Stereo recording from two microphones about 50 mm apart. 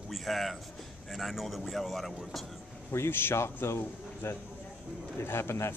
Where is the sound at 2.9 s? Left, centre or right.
Left.